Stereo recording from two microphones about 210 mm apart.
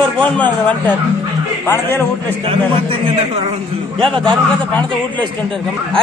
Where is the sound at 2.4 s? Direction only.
25° right (ahead or behind).